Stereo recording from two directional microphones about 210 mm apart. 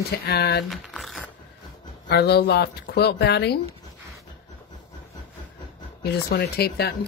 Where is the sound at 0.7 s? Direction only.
Centre (ahead or behind).